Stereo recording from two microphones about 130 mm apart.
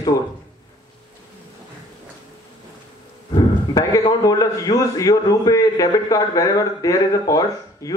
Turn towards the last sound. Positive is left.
turn(degrees=25)  # may be behind; listen again after turning